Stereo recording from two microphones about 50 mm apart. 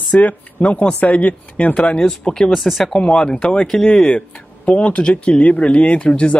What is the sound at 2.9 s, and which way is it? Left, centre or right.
Speech, left.